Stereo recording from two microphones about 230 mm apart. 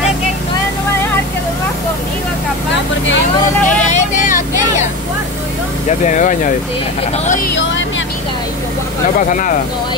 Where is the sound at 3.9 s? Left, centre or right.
Left.